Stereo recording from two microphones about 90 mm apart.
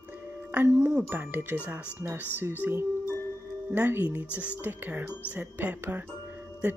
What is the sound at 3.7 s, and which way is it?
Speech, 20° right (ahead or behind).